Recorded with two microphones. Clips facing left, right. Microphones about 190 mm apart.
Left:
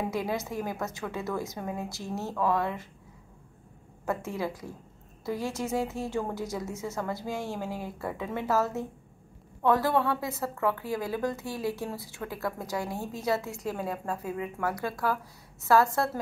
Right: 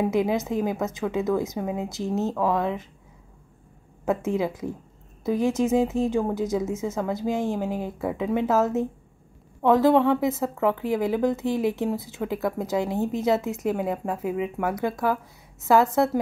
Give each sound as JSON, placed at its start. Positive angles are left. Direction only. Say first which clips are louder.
{"t": 0.1, "sound": "a woman's voice", "louder": "right 8 dB", "side_deg": -20}
{"t": 4.0, "sound": "a woman's voice", "louder": "right 7 dB", "side_deg": -20}